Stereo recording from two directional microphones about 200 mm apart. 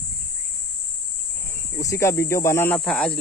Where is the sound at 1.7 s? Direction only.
15° left (ahead or behind).